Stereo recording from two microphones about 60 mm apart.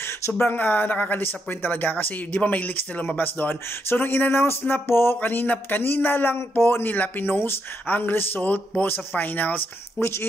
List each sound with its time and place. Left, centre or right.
0.4 s speech: left